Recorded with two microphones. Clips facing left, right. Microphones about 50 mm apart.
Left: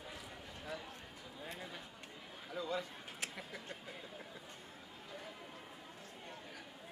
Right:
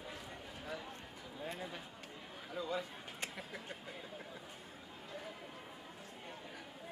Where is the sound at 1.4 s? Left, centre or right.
Centre.